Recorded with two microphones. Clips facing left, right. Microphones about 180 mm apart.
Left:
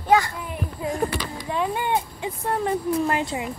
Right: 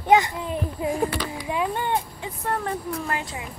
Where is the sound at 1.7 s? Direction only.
10° left (ahead or behind).